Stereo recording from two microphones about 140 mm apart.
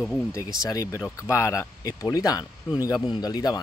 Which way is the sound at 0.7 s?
25° left (ahead or behind).